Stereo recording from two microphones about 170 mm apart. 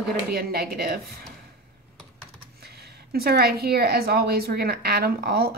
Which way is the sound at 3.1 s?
65° right (ahead or behind).